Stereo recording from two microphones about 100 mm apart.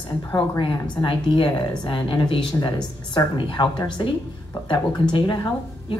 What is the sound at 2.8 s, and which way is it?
A woman's voice, 45° left (ahead or behind).